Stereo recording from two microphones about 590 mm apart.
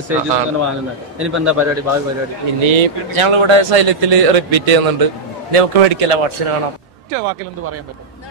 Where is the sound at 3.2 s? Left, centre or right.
Right.